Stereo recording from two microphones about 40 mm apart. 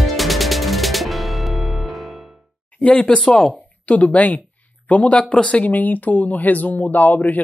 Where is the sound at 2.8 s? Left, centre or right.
Left.